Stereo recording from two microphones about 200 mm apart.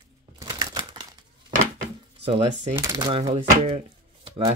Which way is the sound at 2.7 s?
20° right (ahead or behind).